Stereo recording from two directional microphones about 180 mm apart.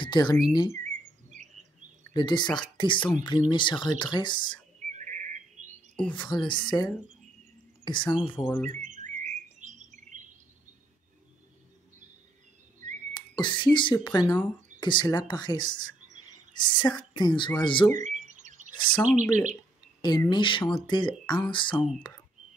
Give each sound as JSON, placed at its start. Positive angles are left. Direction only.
{"t": 0.0, "sound": "speech", "side_deg": 25}
{"t": 0.8, "sound": "a sound", "side_deg": -45}
{"t": 2.1, "sound": "speech", "side_deg": 25}
{"t": 4.9, "sound": "bird", "side_deg": -45}
{"t": 6.1, "sound": "speech", "side_deg": 25}
{"t": 8.6, "sound": "chirp", "side_deg": -40}
{"t": 13.1, "sound": "speech", "side_deg": 25}
{"t": 17.9, "sound": "bird", "side_deg": -40}
{"t": 18.8, "sound": "speech", "side_deg": 25}
{"t": 19.0, "sound": "speech", "side_deg": -45}
{"t": 20.0, "sound": "speech", "side_deg": 25}